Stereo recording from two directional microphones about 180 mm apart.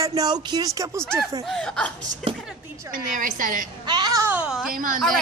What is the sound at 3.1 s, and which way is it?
Speech, 45° right (ahead or behind).